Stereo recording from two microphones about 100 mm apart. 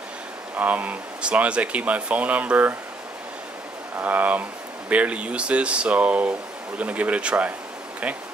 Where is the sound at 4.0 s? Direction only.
15° right (ahead or behind).